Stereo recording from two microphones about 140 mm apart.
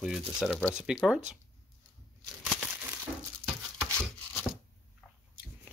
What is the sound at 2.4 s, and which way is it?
Crumpling, centre (ahead or behind).